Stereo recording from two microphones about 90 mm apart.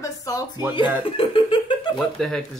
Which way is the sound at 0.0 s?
40° left (ahead or behind).